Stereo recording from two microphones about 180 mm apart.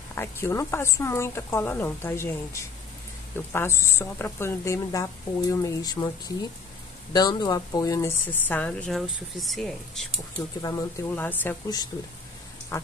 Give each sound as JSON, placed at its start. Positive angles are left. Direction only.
{"t": 0.1, "sound": "a woman's voice", "side_deg": 15}
{"t": 10.6, "sound": "a woman's voice", "side_deg": 20}
{"t": 12.7, "sound": "a woman's voice", "side_deg": 15}